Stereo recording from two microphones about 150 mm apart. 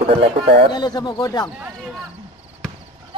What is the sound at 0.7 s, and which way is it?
Speech, 25° left (ahead or behind).